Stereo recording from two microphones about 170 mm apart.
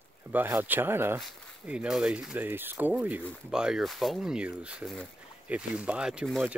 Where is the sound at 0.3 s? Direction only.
10° right (ahead or behind).